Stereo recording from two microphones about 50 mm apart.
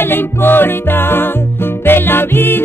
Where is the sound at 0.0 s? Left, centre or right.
Left.